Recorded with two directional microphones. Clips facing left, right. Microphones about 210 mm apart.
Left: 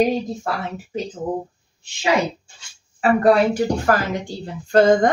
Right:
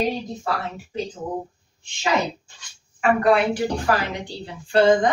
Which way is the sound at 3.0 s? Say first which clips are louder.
Left 3 dB; 40° left (ahead or behind).